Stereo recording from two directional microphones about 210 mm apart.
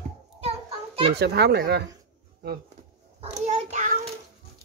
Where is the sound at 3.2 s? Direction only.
35° right (ahead or behind).